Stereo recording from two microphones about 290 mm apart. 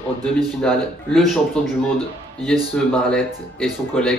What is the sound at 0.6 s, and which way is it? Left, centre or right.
Speech, centre.